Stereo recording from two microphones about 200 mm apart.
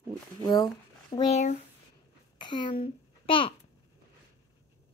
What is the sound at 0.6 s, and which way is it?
Speech, 25° left (ahead or behind).